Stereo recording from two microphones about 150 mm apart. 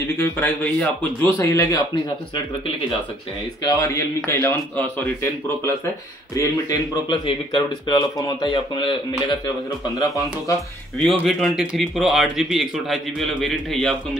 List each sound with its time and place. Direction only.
0.2 s a man's voice: 15° left (ahead or behind)
1.4 s speech: 20° left (ahead or behind)
3.6 s a man's voice: 20° left (ahead or behind)
6.3 s speech: 30° left (ahead or behind)
11.2 s speech: centre (ahead or behind)